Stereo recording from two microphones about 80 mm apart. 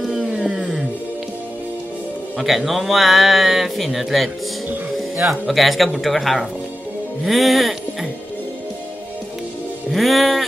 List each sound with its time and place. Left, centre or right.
0.0 s roaring cats: centre
2.3 s a man's voice: centre
4.9 s music: centre
5.5 s a man's voice: centre
9.8 s speech: centre